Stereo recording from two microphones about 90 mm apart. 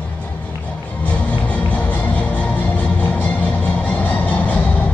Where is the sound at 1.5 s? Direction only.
15° left (ahead or behind).